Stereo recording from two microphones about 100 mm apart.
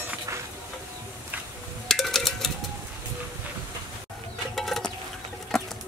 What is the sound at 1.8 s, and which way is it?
Cowbell, 5° left (ahead or behind).